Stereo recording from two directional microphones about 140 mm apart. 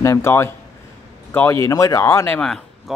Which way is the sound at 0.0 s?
20° left (ahead or behind).